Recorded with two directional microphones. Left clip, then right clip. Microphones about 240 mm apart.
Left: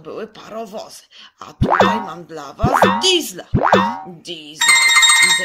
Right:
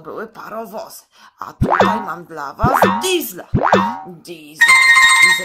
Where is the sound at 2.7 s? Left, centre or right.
Centre.